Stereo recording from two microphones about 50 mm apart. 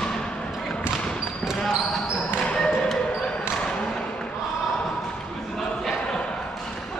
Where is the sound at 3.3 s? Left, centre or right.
Centre.